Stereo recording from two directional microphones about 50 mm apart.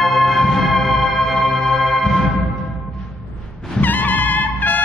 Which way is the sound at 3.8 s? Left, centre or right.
Left.